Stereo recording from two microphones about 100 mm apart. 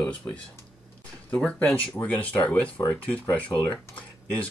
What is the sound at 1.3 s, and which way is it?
Speech, 15° left (ahead or behind).